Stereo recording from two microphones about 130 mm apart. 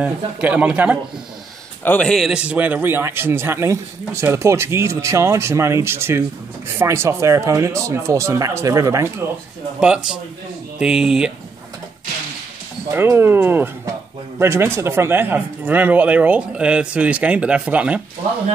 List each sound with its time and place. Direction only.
0.0 s speech: 10° right (ahead or behind)
1.9 s a man's voice: 5° left (ahead or behind); by 9.1 s 20° right (ahead or behind)
9.8 s speech: 5° right (ahead or behind)
12.9 s speech: 15° right (ahead or behind)